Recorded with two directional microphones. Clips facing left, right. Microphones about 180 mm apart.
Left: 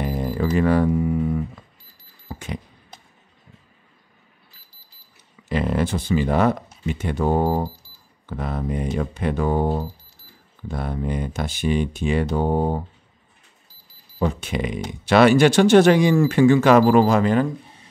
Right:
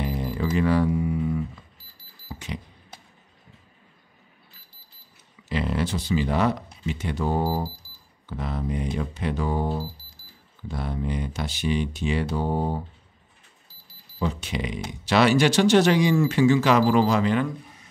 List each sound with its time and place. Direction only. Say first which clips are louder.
0.0 s music: left 4 dB; 50° left (ahead or behind)
2.2 s a sound: left 3 dB; 50° left (ahead or behind)
5.5 s speech: left 4 dB; 50° left (ahead or behind)
14.2 s speech: left 4 dB; 50° left (ahead or behind)